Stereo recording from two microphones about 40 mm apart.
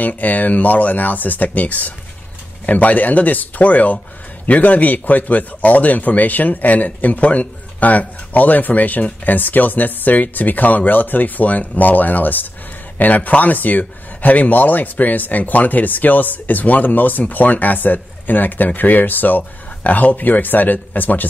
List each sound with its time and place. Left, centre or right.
0.2 s speech: left